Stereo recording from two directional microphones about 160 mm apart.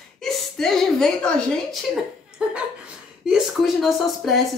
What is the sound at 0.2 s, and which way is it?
A woman's voice, centre (ahead or behind).